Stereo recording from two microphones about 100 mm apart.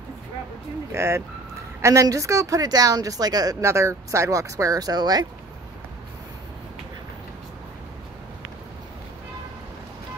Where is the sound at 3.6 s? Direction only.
30° right (ahead or behind).